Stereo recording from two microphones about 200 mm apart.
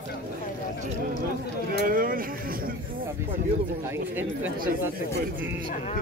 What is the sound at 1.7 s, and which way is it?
Speech, 45° right (ahead or behind).